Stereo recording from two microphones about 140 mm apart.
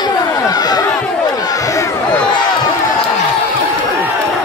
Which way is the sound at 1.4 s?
25° left (ahead or behind).